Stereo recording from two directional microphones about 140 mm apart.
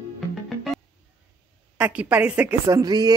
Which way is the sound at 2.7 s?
25° right (ahead or behind).